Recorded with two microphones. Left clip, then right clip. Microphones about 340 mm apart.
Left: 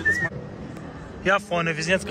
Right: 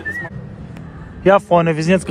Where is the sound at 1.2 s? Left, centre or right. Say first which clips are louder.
Right 10 dB; centre.